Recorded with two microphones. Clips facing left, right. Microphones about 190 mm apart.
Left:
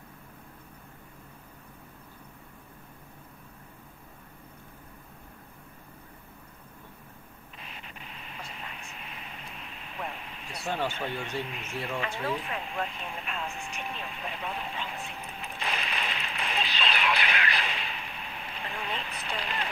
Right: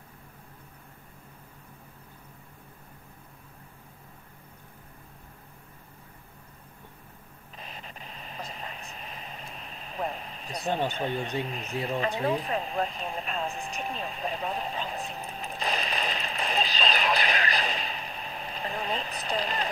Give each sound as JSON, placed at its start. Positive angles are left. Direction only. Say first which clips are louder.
{"t": 7.5, "sound": "radio", "louder": "right 3 dB", "side_deg": -35}
{"t": 10.9, "sound": "speech", "louder": "right 4 dB", "side_deg": -35}
{"t": 12.2, "sound": "vehicle", "louder": "right 5 dB", "side_deg": -35}